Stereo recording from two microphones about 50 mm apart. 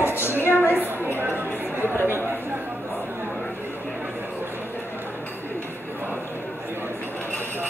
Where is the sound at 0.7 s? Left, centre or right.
Right.